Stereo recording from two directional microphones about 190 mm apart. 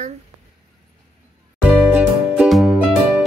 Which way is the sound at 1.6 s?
5° right (ahead or behind).